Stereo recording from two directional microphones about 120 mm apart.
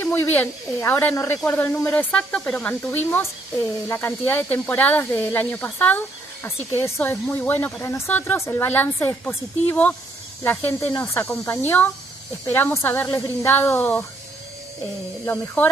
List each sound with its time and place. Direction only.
0.0 s speech: 15° left (ahead or behind)
15.2 s speech: 15° left (ahead or behind)